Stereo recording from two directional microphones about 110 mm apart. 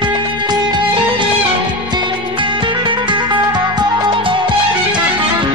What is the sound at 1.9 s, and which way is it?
Music, 45° right (ahead or behind).